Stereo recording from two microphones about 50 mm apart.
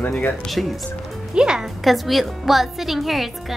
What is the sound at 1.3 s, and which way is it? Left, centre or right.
Music, centre.